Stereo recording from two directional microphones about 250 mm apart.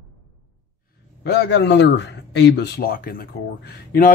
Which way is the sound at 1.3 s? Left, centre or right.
Left.